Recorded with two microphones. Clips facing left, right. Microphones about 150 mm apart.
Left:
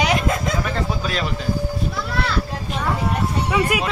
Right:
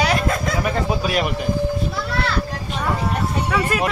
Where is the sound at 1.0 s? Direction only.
15° right (ahead or behind).